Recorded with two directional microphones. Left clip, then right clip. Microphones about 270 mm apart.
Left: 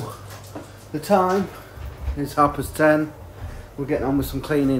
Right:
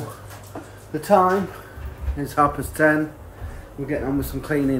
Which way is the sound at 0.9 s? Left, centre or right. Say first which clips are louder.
Right 2 dB; centre.